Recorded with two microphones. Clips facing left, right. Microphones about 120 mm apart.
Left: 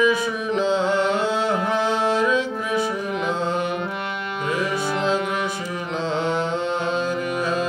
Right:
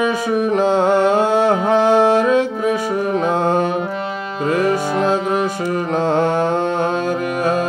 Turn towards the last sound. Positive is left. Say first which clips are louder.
# right 5 dB
turn(degrees=-45)  # may be behind; listen again after turning